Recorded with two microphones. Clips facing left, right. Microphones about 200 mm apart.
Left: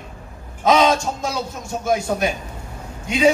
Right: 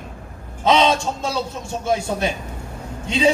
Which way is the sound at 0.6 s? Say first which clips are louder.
Left 1 dB; 30° right (ahead or behind).